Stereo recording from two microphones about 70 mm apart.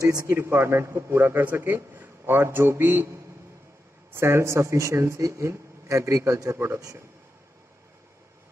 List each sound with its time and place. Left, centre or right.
0.3 s a man's voice: right